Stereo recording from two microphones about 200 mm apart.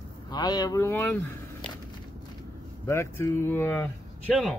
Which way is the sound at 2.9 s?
15° left (ahead or behind).